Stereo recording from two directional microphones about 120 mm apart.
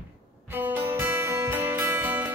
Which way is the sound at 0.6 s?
20° right (ahead or behind).